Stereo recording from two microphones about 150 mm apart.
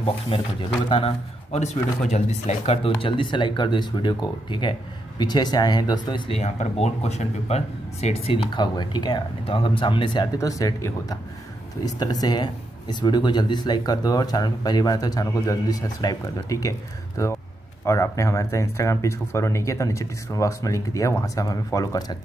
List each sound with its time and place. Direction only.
0.0 s speech: 35° left (ahead or behind)
1.5 s speech: 45° left (ahead or behind)
6.4 s speech: 45° left (ahead or behind); by 22.1 s 25° left (ahead or behind)